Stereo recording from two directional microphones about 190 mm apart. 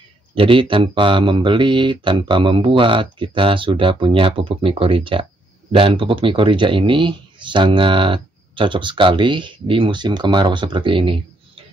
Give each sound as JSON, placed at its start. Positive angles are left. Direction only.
{"t": 0.3, "sound": "speech", "side_deg": -25}